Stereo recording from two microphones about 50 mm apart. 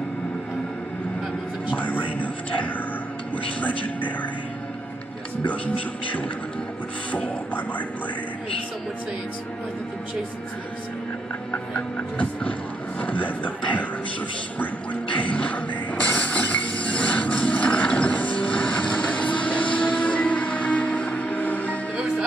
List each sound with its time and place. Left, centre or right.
1.8 s a sound: left
2.1 s music: left
7.1 s speech: left
11.5 s music: left
13.0 s speech: left
15.1 s music: left